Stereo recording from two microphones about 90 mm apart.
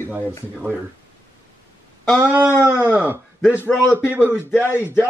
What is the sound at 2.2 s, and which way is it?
Speech, 25° right (ahead or behind).